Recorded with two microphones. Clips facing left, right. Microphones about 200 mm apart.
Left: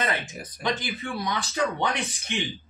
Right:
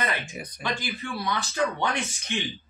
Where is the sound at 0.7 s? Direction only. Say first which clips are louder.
Left 3 dB; 20° left (ahead or behind).